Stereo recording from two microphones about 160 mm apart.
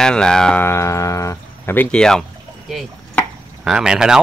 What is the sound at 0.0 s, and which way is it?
Speech, 5° left (ahead or behind).